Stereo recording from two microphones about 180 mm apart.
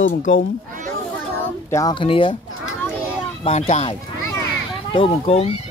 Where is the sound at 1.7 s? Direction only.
25° left (ahead or behind).